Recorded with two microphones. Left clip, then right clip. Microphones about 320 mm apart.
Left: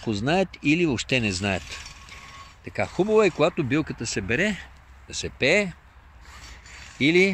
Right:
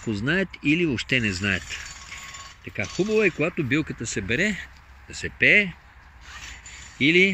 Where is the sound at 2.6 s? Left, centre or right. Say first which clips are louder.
Left 2 dB; left.